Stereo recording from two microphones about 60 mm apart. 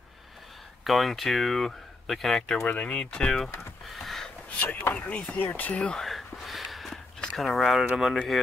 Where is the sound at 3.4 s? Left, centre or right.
Left.